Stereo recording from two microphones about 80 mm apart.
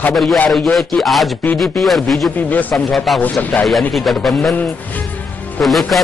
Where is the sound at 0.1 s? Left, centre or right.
Centre.